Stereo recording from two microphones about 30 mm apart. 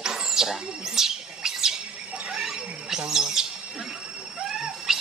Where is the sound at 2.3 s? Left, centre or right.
Centre.